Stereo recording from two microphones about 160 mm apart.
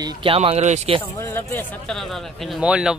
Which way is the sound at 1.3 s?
15° left (ahead or behind).